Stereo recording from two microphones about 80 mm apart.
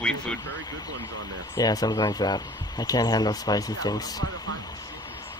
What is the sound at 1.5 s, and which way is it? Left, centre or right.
Speech, left.